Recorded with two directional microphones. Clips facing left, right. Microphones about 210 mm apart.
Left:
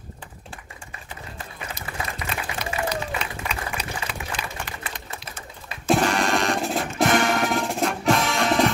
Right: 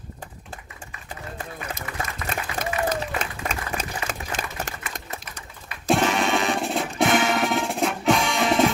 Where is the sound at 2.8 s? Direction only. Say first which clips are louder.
Right 2 dB; 45° right (ahead or behind).